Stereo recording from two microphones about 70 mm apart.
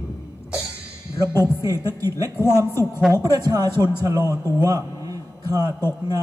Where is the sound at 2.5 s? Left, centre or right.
Right.